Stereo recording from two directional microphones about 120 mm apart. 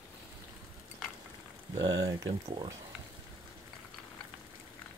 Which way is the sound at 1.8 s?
30° right (ahead or behind).